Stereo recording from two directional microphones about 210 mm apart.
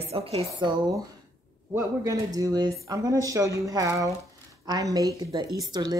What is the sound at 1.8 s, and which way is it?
Speech, 15° right (ahead or behind).